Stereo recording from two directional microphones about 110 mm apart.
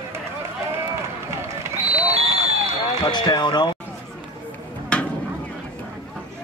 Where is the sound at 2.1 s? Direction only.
70° right (ahead or behind).